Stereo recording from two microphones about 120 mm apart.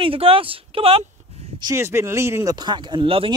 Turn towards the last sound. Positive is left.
turn(degrees=-45)  # may be behind; listen again after turning